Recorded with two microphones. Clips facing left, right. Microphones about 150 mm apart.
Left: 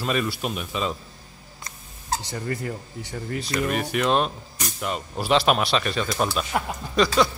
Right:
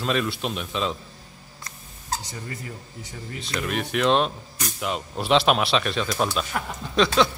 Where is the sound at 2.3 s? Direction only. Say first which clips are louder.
Left 7 dB; 60° left (ahead or behind).